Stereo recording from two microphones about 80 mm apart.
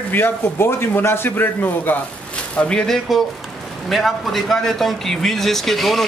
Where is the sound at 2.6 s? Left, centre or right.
Centre.